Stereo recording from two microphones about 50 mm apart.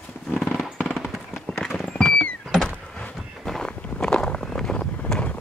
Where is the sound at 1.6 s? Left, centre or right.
Centre.